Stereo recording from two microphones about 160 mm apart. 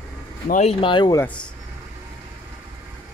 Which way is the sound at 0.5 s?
40° left (ahead or behind).